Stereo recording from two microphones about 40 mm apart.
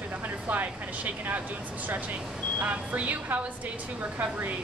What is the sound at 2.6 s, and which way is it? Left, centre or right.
Speech, right.